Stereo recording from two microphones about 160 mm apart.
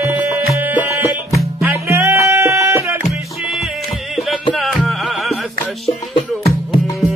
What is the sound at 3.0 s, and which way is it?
Music, centre (ahead or behind).